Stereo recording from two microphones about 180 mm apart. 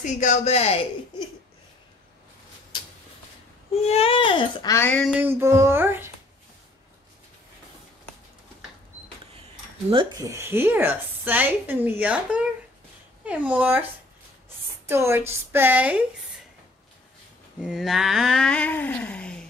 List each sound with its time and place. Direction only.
0.0 s speech: 40° left (ahead or behind)
3.7 s speech: 35° left (ahead or behind)
4.7 s a sound: 10° left (ahead or behind)
5.2 s a woman's voice: 15° right (ahead or behind)
9.8 s speech: 30° right (ahead or behind)
10.2 s a woman's voice: 15° right (ahead or behind)
14.9 s a woman's voice: 15° right (ahead or behind)
17.6 s a sound: 5° right (ahead or behind)